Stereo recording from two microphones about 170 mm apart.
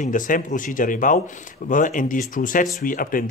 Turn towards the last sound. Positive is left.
turn(degrees=55)  # may be behind; listen again after turning